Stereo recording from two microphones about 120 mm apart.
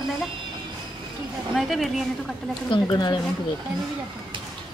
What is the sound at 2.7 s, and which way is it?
Speech, 40° left (ahead or behind).